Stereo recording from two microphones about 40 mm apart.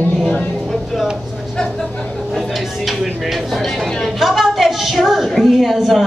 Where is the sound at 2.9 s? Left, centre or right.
Centre.